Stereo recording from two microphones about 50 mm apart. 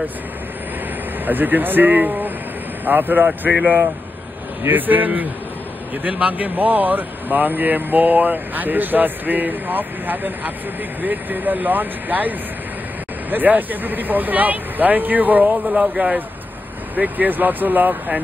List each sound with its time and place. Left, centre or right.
1.2 s speech: right
15.6 s speech: right